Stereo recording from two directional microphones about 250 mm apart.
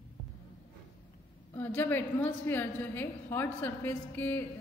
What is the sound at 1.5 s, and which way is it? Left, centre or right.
A woman's voice, centre.